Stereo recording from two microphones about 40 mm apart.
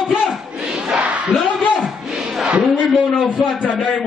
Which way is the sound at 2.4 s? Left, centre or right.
Right.